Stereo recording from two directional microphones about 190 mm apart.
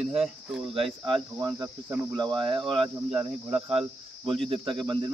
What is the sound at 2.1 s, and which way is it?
Speech, 25° right (ahead or behind).